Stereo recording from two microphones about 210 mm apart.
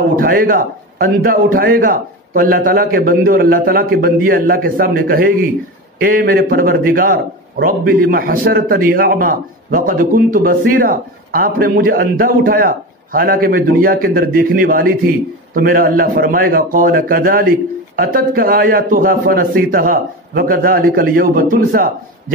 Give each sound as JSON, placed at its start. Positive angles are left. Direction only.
{"t": 0.1, "sound": "a man's voice", "side_deg": -40}